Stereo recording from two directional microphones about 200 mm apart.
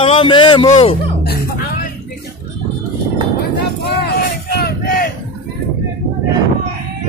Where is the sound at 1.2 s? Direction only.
55° left (ahead or behind).